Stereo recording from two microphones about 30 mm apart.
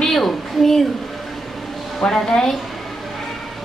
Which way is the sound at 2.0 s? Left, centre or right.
Left.